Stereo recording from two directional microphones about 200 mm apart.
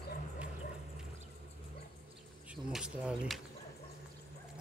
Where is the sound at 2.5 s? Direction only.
5° right (ahead or behind).